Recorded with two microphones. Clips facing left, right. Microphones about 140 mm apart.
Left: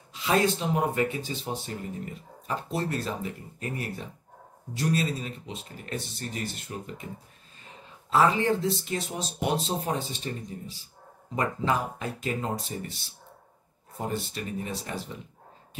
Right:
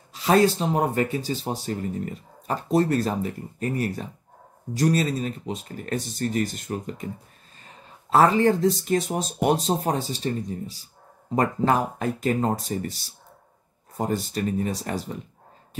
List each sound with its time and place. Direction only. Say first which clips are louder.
0.1 s speech: right 6 dB; 40° right (ahead or behind)
8.1 s speech: right 5 dB; 45° right (ahead or behind)
11.3 s speech: right 6 dB; 50° right (ahead or behind)